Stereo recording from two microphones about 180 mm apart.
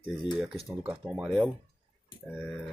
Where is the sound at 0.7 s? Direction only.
5° right (ahead or behind).